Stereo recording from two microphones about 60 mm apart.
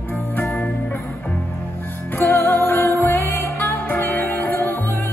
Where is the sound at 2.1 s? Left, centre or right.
Left.